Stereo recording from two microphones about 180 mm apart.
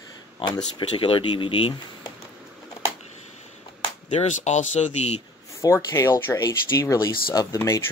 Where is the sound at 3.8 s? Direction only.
40° left (ahead or behind).